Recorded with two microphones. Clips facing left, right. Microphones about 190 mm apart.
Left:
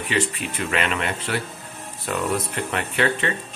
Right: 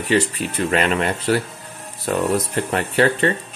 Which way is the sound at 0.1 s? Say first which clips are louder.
Right 6 dB; 40° right (ahead or behind).